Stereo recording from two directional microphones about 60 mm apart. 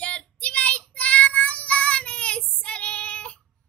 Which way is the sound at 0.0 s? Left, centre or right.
Centre.